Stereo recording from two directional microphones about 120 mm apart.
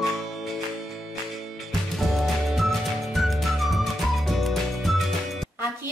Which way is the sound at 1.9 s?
Centre (ahead or behind).